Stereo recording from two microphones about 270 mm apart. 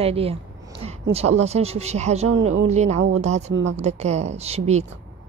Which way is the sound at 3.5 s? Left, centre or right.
Right.